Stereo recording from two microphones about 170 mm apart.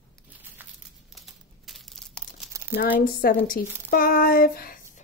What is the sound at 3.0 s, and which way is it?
A woman's voice, 60° left (ahead or behind).